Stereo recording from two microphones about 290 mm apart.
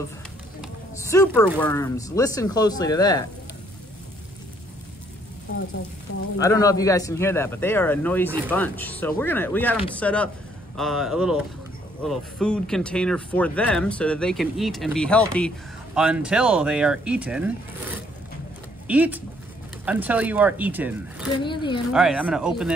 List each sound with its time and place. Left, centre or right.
1.1 s speech: centre
6.3 s speech: centre
18.9 s speech: centre
21.4 s speech: centre
21.9 s speech: centre